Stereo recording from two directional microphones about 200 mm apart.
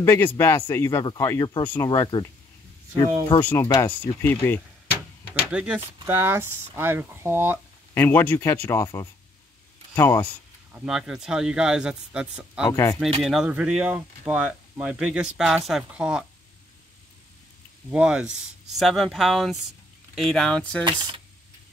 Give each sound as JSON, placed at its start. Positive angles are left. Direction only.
{"t": 0.0, "sound": "speech", "side_deg": 10}
{"t": 1.9, "sound": "speech", "side_deg": 20}
{"t": 3.4, "sound": "speech", "side_deg": 15}
{"t": 5.5, "sound": "speech", "side_deg": -5}
{"t": 7.9, "sound": "speech", "side_deg": 10}
{"t": 10.7, "sound": "speech", "side_deg": -5}
{"t": 12.6, "sound": "speech", "side_deg": 15}
{"t": 13.2, "sound": "speech", "side_deg": 0}
{"t": 17.9, "sound": "speech", "side_deg": -5}
{"t": 20.8, "sound": "speech", "side_deg": -20}